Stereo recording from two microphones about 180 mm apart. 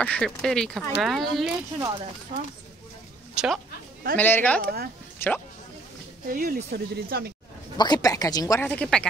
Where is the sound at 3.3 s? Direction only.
Centre (ahead or behind).